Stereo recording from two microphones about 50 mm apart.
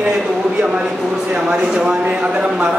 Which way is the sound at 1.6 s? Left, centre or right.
Right.